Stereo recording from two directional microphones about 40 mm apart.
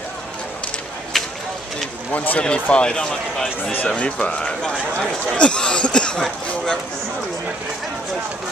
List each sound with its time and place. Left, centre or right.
1.1 s a sound: centre
2.1 s speech: left
2.4 s a man's voice: left
3.8 s a man's voice: left